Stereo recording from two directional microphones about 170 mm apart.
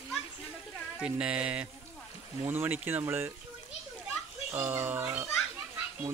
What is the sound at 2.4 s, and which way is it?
Speech, 10° right (ahead or behind).